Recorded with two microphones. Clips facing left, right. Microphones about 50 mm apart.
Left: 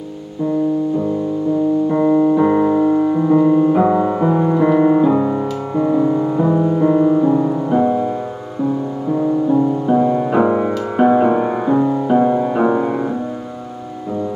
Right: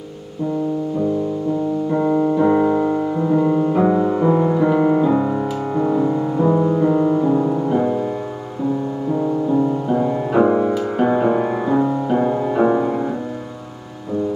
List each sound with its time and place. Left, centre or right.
2.0 s piano: centre
3.1 s music: centre
3.9 s music: left
4.2 s music: centre
9.1 s music: centre